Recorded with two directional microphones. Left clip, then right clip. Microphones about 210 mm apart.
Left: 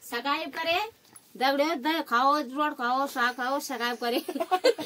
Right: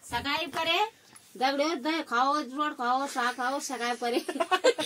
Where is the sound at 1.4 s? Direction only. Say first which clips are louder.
Left 2 dB; 10° left (ahead or behind).